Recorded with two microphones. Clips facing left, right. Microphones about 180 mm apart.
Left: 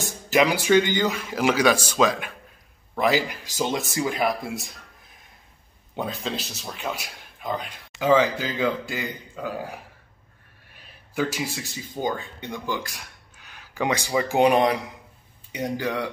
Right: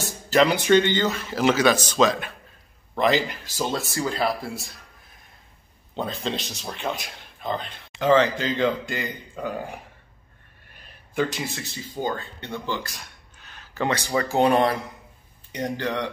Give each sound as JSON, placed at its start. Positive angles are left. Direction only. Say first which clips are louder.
{"t": 0.0, "sound": "speech", "louder": "right 1 dB", "side_deg": 10}
{"t": 5.9, "sound": "a man's voice", "louder": "right 1 dB", "side_deg": 5}
{"t": 10.8, "sound": "speech", "louder": "right 1 dB", "side_deg": 5}